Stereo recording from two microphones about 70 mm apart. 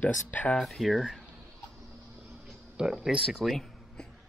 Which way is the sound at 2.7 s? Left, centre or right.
Centre.